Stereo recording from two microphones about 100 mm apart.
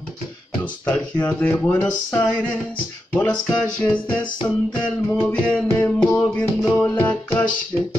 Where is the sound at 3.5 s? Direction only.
10° left (ahead or behind).